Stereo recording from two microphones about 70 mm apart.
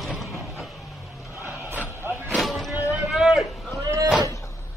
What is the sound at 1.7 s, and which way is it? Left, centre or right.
Vehicle, right.